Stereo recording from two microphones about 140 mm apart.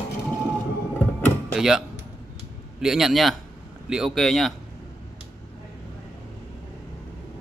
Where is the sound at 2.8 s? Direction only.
Centre (ahead or behind).